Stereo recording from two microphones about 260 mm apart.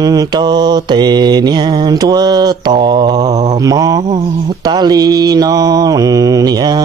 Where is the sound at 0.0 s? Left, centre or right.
Centre.